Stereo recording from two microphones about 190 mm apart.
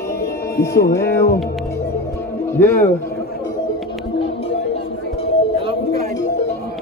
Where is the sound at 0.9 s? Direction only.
15° left (ahead or behind).